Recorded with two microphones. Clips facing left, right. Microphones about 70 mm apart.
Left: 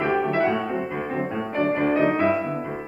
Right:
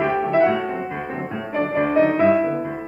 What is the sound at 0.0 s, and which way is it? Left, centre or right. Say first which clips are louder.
Music: right 4 dB; centre.